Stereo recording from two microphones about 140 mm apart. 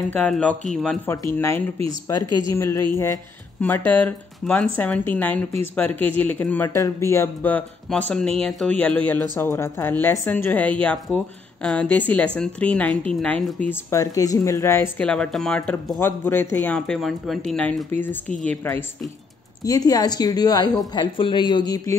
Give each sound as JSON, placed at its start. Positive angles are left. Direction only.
{"t": 0.1, "sound": "a woman's voice", "side_deg": 10}
{"t": 1.0, "sound": "a woman's voice", "side_deg": 20}
{"t": 13.7, "sound": "speech", "side_deg": 20}
{"t": 15.0, "sound": "a woman's voice", "side_deg": 5}
{"t": 18.5, "sound": "a woman's voice", "side_deg": 15}
{"t": 19.6, "sound": "speech", "side_deg": 25}